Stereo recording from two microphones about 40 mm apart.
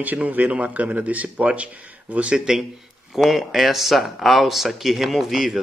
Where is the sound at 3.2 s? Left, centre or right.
Centre.